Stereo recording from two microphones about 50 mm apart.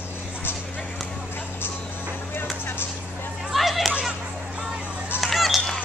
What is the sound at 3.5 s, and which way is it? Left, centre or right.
Chatter, centre.